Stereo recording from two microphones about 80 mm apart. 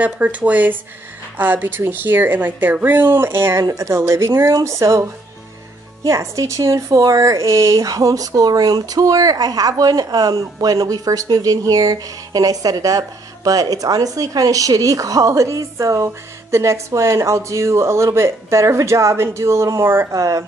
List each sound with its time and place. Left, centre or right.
0.0 s speech: centre; by 5.0 s right
6.0 s speech: right
20.1 s speech: right